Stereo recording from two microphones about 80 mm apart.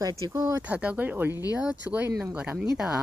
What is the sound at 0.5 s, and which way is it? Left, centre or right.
Speech, centre.